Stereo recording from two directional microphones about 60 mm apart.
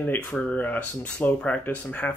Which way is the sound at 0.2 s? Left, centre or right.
Left.